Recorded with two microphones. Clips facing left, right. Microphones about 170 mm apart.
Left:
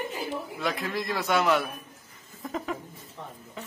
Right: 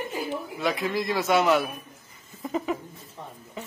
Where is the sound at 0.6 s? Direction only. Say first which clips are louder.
Right 4 dB; centre (ahead or behind).